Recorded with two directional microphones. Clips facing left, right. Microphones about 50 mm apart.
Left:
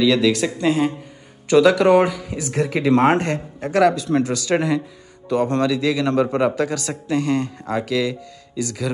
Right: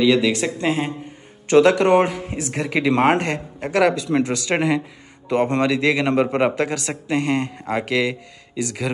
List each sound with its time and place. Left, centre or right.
0.0 s speech: right
2.4 s speech: right
2.9 s speech: right
3.2 s speech: right